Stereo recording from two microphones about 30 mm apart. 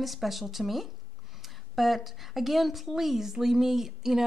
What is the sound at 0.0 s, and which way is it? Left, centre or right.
A woman's voice, centre.